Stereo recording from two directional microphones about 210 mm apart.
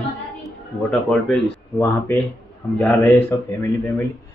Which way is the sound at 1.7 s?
15° left (ahead or behind).